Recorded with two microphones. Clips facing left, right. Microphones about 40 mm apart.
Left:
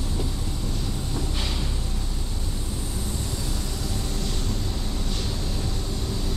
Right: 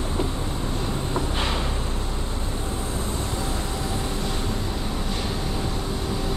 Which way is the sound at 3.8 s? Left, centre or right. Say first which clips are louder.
Right 4 dB; right.